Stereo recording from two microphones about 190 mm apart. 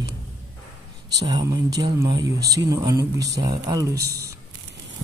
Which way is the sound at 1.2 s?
20° right (ahead or behind).